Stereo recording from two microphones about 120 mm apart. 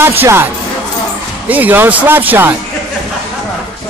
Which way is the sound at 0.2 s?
20° right (ahead or behind).